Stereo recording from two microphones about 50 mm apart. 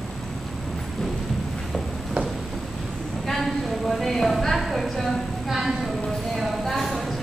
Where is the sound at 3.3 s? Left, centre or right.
Centre.